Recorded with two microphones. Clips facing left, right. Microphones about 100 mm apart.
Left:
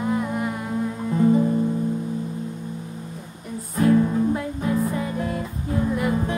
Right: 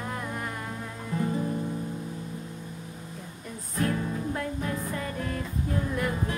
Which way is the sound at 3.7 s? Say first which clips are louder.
Left 11 dB; 10° left (ahead or behind).